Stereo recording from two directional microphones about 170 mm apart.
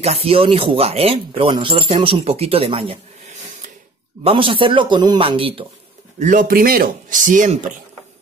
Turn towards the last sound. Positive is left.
turn(degrees=-50)  # may be behind; listen again after turning